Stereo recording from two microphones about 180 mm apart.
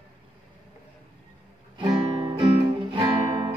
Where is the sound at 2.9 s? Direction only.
25° right (ahead or behind).